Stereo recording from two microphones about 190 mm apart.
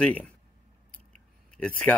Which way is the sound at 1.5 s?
5° left (ahead or behind).